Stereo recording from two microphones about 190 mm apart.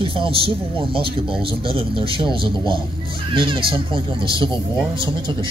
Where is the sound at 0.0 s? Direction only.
30° right (ahead or behind).